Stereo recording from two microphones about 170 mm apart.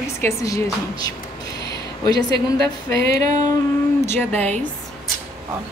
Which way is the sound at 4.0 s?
10° left (ahead or behind).